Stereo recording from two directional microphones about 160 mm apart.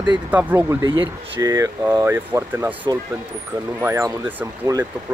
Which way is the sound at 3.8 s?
15° right (ahead or behind).